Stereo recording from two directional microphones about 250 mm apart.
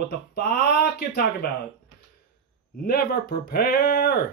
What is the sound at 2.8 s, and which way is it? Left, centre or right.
Speech, left.